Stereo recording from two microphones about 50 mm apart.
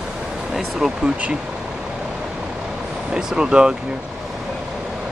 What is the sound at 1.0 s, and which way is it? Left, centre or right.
Speech, centre.